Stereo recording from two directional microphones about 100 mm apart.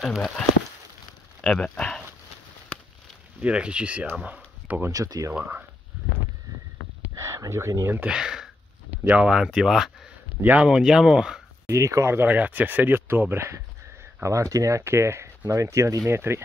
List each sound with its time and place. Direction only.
0.0 s speech: 5° left (ahead or behind)
1.4 s speech: 5° left (ahead or behind)
3.3 s speech: 10° right (ahead or behind)
4.9 s speech: 35° right (ahead or behind)
5.3 s speech: 20° right (ahead or behind)
7.2 s speech: 30° right (ahead or behind)
8.0 s speech: 10° right (ahead or behind)
11.6 s speech: 30° right (ahead or behind)